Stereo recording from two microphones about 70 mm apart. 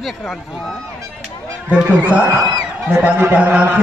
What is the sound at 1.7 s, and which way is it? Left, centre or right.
A man's voice, right.